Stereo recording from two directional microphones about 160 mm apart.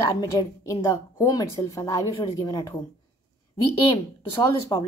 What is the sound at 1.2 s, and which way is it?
A woman's voice, 20° left (ahead or behind).